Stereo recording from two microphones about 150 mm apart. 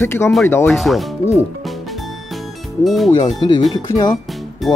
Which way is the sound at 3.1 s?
30° left (ahead or behind).